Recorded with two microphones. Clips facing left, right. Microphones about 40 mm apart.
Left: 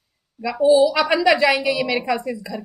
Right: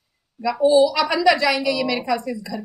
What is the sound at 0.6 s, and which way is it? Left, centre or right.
A woman's voice, centre.